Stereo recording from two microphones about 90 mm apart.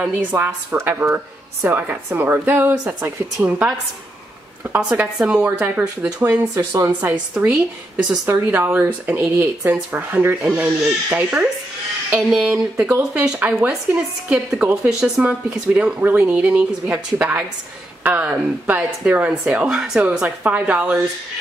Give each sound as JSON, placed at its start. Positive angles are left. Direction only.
{"t": 0.3, "sound": "speech", "side_deg": -30}
{"t": 4.7, "sound": "speech", "side_deg": -15}
{"t": 5.6, "sound": "speech", "side_deg": -20}
{"t": 6.5, "sound": "speech", "side_deg": -40}
{"t": 7.4, "sound": "speech", "side_deg": -15}
{"t": 12.3, "sound": "speech", "side_deg": -5}